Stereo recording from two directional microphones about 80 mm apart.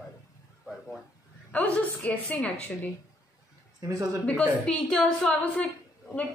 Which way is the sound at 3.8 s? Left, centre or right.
Right.